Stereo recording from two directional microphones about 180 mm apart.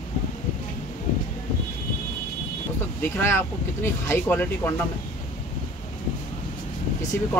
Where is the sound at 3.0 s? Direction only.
15° left (ahead or behind).